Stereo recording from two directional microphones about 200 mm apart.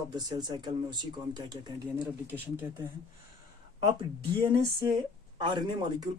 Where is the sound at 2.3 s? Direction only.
10° right (ahead or behind).